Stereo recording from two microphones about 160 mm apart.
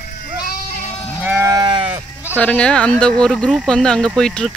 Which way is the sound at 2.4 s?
5° left (ahead or behind).